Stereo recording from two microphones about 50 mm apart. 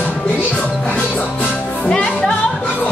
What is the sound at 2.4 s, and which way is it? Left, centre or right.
Music, left.